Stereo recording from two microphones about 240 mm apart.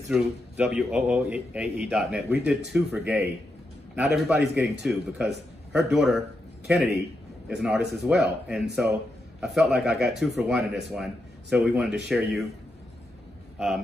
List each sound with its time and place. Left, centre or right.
0.1 s a man's voice: centre